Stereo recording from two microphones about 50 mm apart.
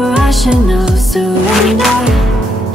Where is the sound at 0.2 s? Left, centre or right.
Centre.